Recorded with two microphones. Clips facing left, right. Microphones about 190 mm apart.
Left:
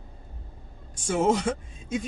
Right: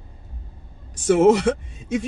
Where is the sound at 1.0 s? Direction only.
85° right.